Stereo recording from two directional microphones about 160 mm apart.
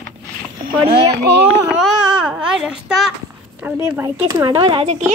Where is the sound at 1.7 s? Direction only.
5° right (ahead or behind); by 4.5 s 20° right (ahead or behind).